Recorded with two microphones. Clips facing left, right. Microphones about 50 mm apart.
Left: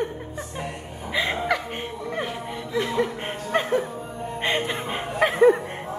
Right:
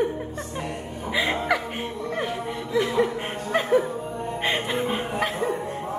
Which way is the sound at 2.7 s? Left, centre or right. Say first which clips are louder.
Right 2 dB; centre.